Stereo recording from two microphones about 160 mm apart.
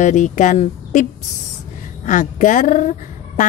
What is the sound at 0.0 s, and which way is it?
Speech, 50° left (ahead or behind).